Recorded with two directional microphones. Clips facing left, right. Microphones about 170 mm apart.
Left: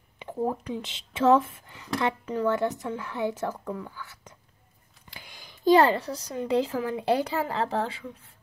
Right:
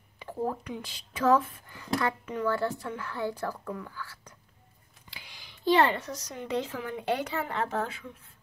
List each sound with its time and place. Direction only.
0.2 s a sound: 20° left (ahead or behind)
0.7 s a woman's voice: 25° left (ahead or behind)
2.4 s a woman's voice: 20° left (ahead or behind)
5.1 s a woman's voice: 45° left (ahead or behind)